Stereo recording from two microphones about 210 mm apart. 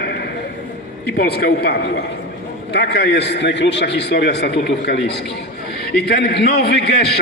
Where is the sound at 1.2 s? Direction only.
50° left (ahead or behind).